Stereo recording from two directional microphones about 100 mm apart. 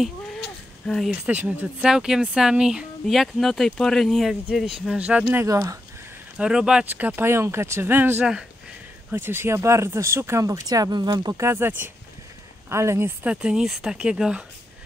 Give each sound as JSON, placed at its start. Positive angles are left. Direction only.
{"t": 0.8, "sound": "speech", "side_deg": 5}
{"t": 1.1, "sound": "speech", "side_deg": -15}
{"t": 1.9, "sound": "speech", "side_deg": -5}
{"t": 4.9, "sound": "speech", "side_deg": -10}
{"t": 5.4, "sound": "speech", "side_deg": -35}
{"t": 6.3, "sound": "speech", "side_deg": -10}
{"t": 11.3, "sound": "speech", "side_deg": -25}
{"t": 13.2, "sound": "speech", "side_deg": -10}